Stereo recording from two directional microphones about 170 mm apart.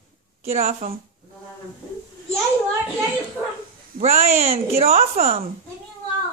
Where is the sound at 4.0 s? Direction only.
40° right (ahead or behind).